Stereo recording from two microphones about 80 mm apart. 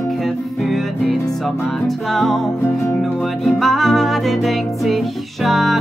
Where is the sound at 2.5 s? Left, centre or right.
Left.